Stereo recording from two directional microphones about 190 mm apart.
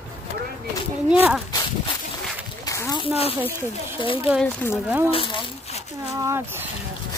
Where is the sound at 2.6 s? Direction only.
15° left (ahead or behind).